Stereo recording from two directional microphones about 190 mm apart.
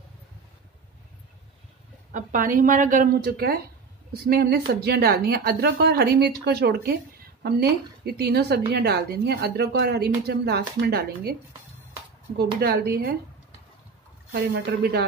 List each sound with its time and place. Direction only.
2.1 s speech: 45° right (ahead or behind)
12.5 s speech: 55° right (ahead or behind)
14.3 s speech: 55° right (ahead or behind)